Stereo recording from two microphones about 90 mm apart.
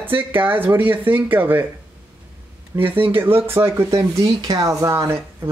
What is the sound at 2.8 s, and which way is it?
Speech, 80° right.